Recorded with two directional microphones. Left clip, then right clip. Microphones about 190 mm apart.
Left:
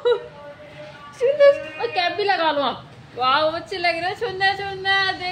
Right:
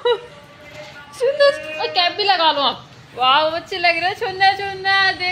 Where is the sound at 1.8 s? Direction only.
15° left (ahead or behind).